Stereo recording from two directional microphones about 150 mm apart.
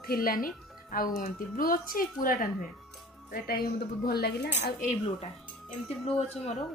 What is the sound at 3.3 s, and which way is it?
Speech, 90° left.